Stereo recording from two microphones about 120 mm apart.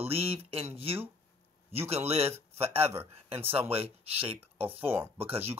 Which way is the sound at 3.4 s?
50° right (ahead or behind).